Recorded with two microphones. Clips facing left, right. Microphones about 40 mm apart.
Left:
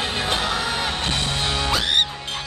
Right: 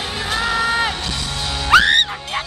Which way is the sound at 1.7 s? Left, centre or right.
Right.